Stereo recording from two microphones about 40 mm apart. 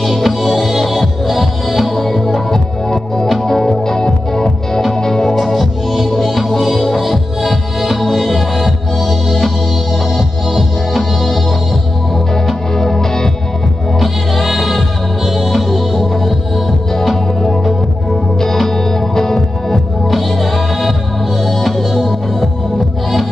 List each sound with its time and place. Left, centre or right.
0.0 s music: centre
12.7 s music: centre
13.9 s music: centre